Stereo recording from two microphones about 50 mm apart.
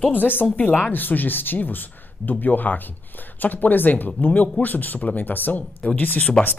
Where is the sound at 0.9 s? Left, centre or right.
Left.